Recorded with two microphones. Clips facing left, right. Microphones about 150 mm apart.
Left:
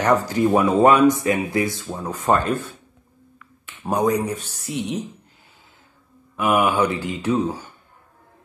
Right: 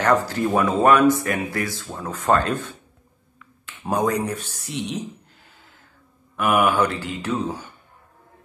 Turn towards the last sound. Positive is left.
turn(degrees=10)  # may be behind; listen again after turning